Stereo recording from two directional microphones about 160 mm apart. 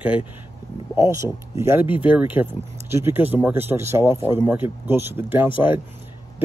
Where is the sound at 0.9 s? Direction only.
20° right (ahead or behind).